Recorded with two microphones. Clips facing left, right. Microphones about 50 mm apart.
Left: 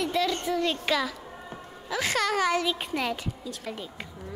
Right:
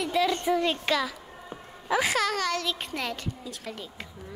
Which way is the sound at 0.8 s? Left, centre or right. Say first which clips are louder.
Even; centre.